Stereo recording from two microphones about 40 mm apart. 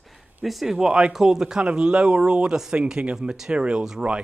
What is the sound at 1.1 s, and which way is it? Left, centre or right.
Speech, centre.